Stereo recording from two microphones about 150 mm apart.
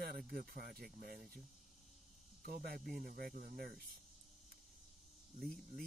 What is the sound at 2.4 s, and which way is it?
Speech, 75° right (ahead or behind).